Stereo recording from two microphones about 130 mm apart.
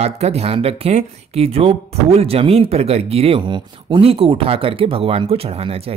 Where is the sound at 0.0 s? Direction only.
55° right (ahead or behind).